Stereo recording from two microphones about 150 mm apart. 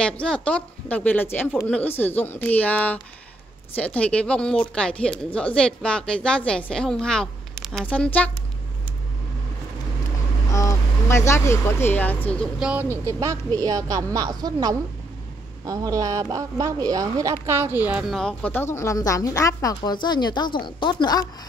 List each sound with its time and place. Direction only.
0.0 s speech: 5° left (ahead or behind)
10.5 s speech: 20° left (ahead or behind)
12.5 s speech: 5° right (ahead or behind)
12.9 s speech: 20° right (ahead or behind)
18.1 s a woman's voice: 5° left (ahead or behind); by 21.3 s 30° left (ahead or behind)